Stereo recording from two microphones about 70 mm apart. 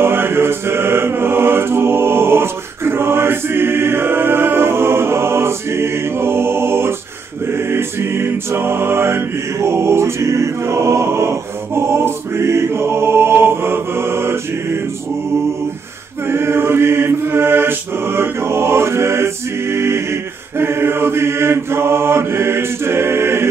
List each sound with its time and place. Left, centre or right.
0.0 s chant: right
7.4 s mantra: right
16.3 s mantra: right